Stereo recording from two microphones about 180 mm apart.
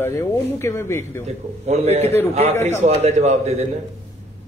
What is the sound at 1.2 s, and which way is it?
A man's voice, 35° right (ahead or behind).